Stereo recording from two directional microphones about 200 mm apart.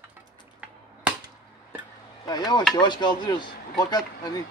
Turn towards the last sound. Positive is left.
turn(degrees=20)  # may be behind; listen again after turning